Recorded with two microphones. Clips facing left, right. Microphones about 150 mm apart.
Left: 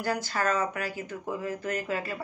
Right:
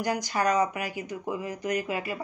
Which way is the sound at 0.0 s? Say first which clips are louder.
Right 2 dB; 15° right (ahead or behind).